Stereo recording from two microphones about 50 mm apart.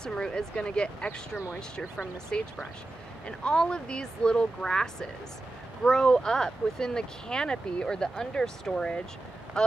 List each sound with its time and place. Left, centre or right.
0.0 s speech: centre
2.3 s speech: centre
5.9 s speech: centre